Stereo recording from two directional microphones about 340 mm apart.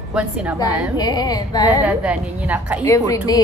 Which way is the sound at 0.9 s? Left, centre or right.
Centre.